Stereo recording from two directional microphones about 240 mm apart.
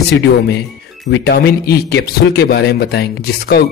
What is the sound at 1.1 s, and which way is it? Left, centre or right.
A man's voice, left.